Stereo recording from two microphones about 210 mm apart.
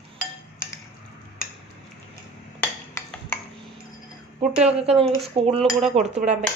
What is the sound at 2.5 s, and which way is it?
Cutlery, 10° left (ahead or behind).